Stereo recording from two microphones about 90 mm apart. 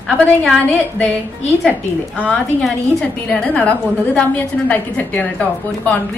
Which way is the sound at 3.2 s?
15° left (ahead or behind).